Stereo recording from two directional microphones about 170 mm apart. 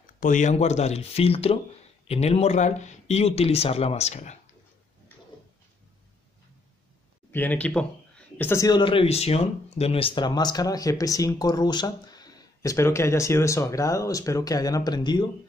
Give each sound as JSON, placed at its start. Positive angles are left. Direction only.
{"t": 0.0, "sound": "speech", "side_deg": 50}
{"t": 7.3, "sound": "speech", "side_deg": 10}